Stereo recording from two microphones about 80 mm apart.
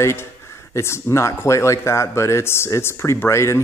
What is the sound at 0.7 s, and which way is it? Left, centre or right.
Speech, left.